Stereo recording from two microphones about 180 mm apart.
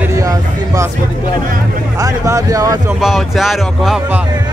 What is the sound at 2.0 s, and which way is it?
Speech, 15° right (ahead or behind).